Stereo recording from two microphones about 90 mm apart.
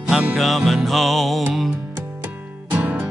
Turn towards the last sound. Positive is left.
turn(degrees=-20)  # may be behind; listen again after turning